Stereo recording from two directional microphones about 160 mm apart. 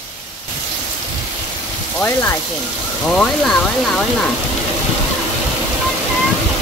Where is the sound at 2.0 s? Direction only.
15° left (ahead or behind).